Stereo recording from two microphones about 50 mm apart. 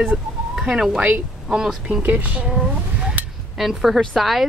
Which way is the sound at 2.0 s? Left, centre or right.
Right.